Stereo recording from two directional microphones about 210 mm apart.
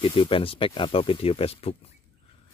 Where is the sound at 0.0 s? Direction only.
25° left (ahead or behind).